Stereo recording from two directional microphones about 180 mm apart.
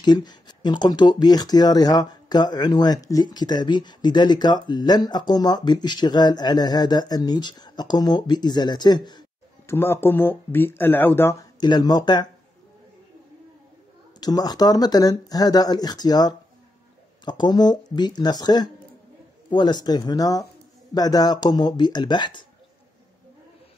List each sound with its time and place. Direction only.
0.0 s speech: 25° left (ahead or behind)
9.7 s speech: 15° left (ahead or behind)
11.6 s speech: 25° left (ahead or behind)
14.2 s speech: 20° left (ahead or behind)